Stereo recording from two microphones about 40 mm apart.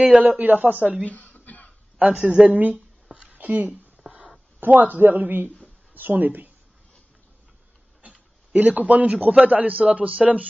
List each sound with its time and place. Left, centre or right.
0.0 s a man's voice: right
1.0 s a sound: left
2.0 s a man's voice: right
4.0 s a sound: centre
4.6 s a man's voice: right
8.0 s a man's voice: right